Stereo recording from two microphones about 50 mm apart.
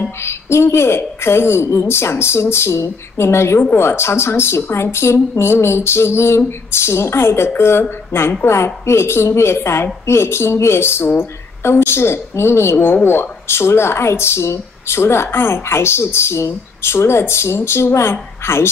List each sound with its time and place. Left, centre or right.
0.2 s a woman's voice: left
11.1 s speech: left
11.7 s speech: left
12.7 s speech: left